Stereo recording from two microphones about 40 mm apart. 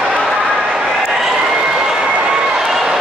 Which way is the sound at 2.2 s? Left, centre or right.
Centre.